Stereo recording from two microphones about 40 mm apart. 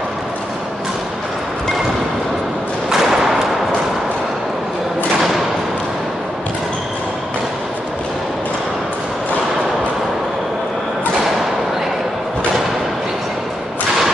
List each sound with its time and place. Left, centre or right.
2.9 s thump: centre